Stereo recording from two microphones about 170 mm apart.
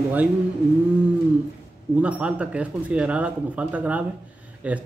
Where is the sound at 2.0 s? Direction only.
10° right (ahead or behind).